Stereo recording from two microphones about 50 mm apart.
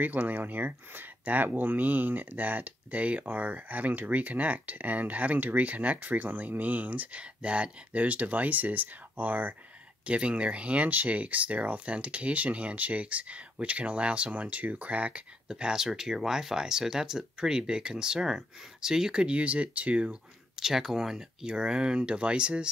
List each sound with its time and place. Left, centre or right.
0.0 s speech: right
10.0 s speech: right
15.4 s speech: centre
20.5 s speech: centre